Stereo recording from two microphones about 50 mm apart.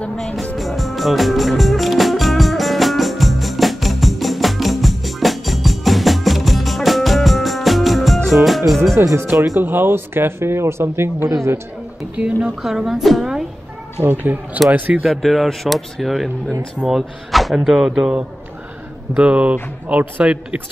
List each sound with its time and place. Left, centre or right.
0.6 s music: centre
8.9 s speech: right
9.6 s speech: right
11.2 s speech: right
12.2 s speech: right
12.6 s speech: centre
14.0 s speech: right
15.2 s speech: centre
19.1 s speech: right